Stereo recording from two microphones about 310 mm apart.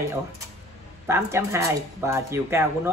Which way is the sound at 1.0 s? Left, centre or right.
Centre.